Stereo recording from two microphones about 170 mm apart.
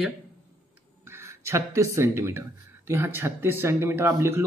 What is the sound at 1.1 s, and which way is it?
Speech, 15° right (ahead or behind).